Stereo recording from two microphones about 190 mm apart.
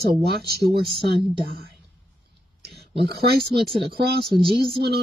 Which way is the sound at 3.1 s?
60° right (ahead or behind).